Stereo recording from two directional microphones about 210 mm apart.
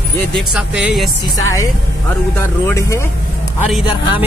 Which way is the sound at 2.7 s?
15° left (ahead or behind).